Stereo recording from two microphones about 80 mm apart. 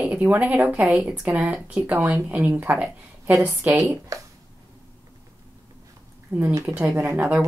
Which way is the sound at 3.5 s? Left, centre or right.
Right.